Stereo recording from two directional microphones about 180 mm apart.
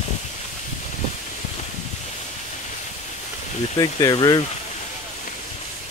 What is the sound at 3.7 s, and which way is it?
Speech, 20° left (ahead or behind).